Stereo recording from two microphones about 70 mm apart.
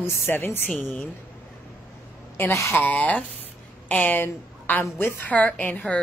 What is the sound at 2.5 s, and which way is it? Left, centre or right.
Speech, left.